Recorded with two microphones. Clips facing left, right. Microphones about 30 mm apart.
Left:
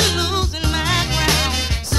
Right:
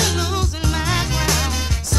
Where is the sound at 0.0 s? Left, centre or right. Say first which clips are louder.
Left 2 dB; left.